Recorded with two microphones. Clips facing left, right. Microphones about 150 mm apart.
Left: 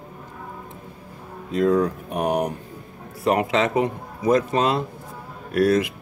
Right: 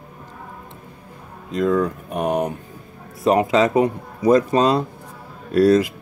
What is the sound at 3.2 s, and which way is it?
Speech, 30° right (ahead or behind).